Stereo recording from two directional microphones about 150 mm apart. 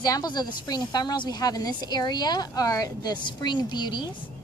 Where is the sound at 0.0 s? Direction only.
25° left (ahead or behind).